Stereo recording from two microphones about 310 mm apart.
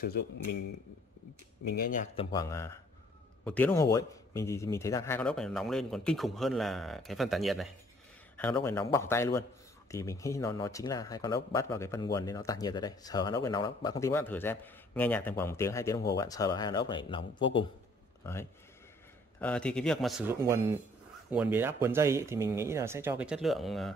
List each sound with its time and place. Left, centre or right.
0.0 s speech: left
1.8 s speech: left
2.3 s speech: centre